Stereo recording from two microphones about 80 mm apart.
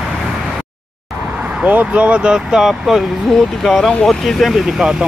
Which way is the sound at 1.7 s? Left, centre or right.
Centre.